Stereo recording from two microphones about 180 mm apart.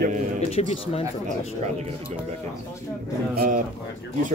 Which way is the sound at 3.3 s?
55° right (ahead or behind).